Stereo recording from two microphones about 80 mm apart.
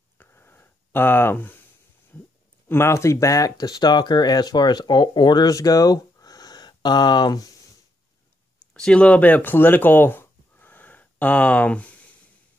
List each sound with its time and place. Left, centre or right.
0.2 s a sound: left
2.7 s speech: left
8.7 s speech: centre